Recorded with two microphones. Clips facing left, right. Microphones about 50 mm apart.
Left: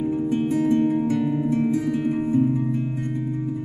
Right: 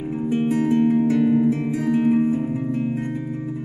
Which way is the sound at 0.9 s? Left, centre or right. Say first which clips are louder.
Right 4 dB; centre.